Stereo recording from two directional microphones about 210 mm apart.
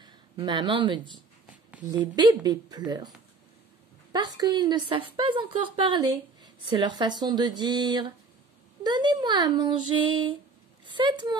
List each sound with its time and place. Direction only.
0.0 s speech: 20° right (ahead or behind)
4.1 s speech: 20° right (ahead or behind)